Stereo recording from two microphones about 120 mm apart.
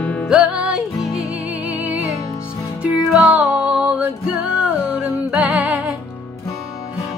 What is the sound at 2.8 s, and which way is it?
Music, 10° right (ahead or behind).